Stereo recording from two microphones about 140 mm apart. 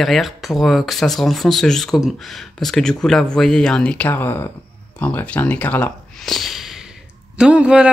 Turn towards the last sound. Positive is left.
turn(degrees=-10)  # may be behind; listen again after turning